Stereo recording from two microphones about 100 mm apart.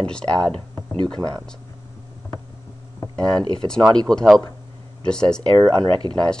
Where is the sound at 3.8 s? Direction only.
45° right (ahead or behind).